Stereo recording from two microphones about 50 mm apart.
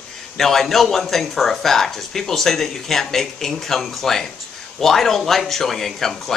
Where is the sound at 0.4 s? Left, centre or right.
Centre.